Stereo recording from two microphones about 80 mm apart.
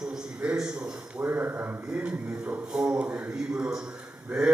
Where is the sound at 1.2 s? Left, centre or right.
Right.